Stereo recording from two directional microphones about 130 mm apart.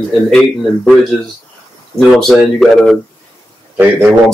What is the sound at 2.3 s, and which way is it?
Speech, centre (ahead or behind).